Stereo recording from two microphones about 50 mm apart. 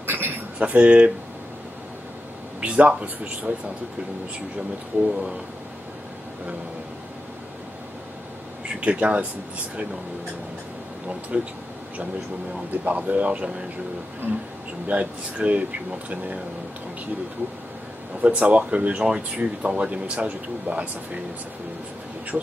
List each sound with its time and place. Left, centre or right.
0.0 s a sound: right
0.6 s speech: right
2.6 s speech: right
8.6 s speech: right
11.3 s speech: right
12.7 s speech: right
14.2 s speech: right
14.9 s speech: right
18.2 s speech: right
22.3 s speech: centre